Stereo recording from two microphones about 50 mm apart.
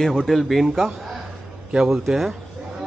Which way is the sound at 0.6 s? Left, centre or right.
Centre.